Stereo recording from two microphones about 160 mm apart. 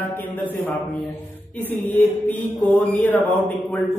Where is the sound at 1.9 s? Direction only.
10° left (ahead or behind).